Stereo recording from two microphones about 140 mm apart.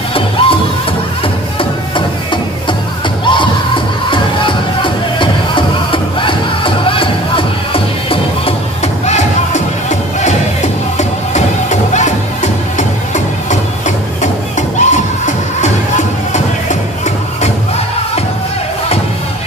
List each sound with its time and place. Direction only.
0.1 s music: 40° left (ahead or behind)
1.6 s music: 35° left (ahead or behind); by 16.7 s 55° left (ahead or behind)